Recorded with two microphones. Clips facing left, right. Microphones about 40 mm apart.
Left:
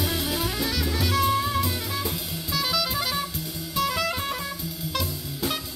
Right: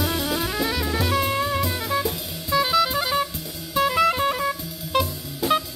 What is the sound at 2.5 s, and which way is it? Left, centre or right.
Music, right.